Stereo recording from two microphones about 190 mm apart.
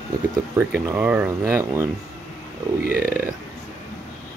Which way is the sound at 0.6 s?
10° right (ahead or behind).